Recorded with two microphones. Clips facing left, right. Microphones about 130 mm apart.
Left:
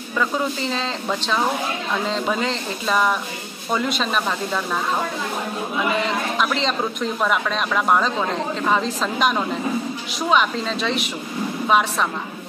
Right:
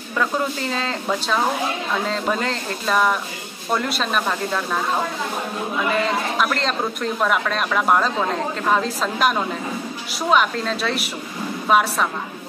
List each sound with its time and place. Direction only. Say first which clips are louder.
0.2 s speech: even; centre (ahead or behind)
6.3 s speech: even; centre (ahead or behind)